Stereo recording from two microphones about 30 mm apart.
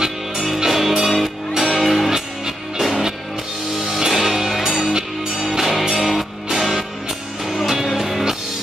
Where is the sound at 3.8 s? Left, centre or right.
Centre.